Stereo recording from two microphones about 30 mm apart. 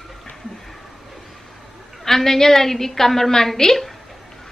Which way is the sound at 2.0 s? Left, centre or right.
Centre.